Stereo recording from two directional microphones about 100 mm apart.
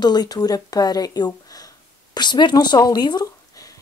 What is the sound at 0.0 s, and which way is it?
A woman's voice, 45° left (ahead or behind).